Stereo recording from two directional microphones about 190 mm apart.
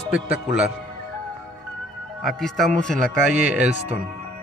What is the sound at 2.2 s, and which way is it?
Speech, centre (ahead or behind).